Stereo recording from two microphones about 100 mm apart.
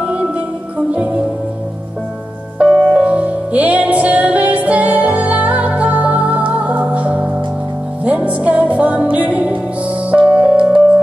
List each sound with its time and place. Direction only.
0.0 s music: 10° right (ahead or behind)
2.6 s music: 10° right (ahead or behind)